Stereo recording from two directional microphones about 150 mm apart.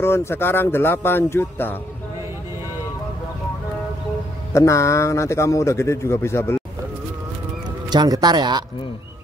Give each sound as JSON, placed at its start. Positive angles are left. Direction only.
{"t": 0.0, "sound": "speech", "side_deg": 15}
{"t": 4.5, "sound": "speech", "side_deg": 20}
{"t": 7.9, "sound": "speech", "side_deg": -30}